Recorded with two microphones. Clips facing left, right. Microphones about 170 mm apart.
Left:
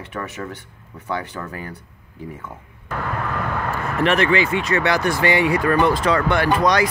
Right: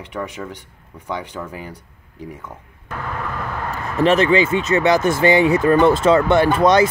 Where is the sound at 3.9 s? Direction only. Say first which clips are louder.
Right 4 dB; 20° right (ahead or behind).